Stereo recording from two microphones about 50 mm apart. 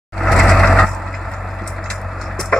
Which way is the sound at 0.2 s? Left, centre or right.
Centre.